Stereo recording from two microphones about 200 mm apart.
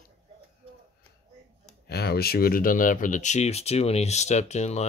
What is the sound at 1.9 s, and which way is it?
Speech, 55° left (ahead or behind).